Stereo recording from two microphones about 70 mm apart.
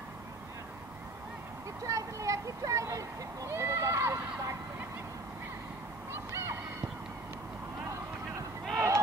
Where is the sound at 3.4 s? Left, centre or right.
Right.